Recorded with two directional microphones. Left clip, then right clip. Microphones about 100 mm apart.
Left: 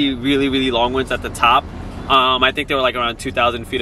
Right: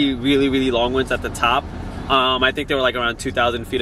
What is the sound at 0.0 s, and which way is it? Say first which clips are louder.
Speech: even; 5° right (ahead or behind).